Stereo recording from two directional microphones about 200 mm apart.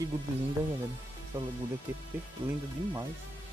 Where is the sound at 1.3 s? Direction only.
10° right (ahead or behind).